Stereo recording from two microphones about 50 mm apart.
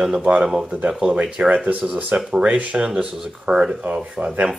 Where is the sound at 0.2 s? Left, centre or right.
Right.